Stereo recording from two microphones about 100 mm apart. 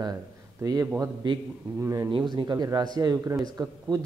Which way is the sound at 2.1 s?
50° right (ahead or behind).